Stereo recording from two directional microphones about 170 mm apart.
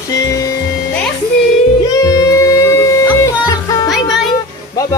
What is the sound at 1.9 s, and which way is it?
Music, 20° left (ahead or behind).